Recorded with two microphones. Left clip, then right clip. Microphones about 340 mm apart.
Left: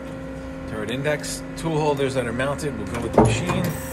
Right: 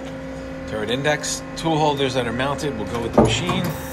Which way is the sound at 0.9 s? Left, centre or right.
Centre.